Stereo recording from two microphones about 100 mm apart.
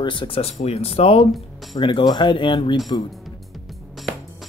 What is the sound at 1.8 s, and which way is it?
Speech, 55° left (ahead or behind).